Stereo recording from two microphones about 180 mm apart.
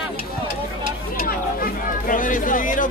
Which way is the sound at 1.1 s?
50° left (ahead or behind).